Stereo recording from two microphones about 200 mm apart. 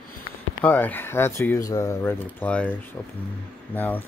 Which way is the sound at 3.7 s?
10° left (ahead or behind).